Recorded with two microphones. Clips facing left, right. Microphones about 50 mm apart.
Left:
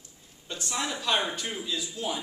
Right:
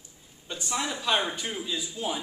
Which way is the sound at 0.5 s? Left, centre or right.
Centre.